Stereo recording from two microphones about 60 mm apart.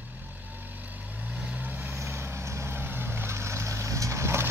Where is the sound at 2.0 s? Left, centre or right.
Right.